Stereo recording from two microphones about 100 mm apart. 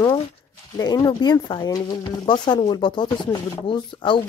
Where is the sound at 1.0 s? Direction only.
45° left (ahead or behind).